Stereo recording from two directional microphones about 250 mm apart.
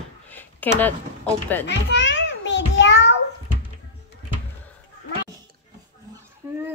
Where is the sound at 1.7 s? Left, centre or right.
Left.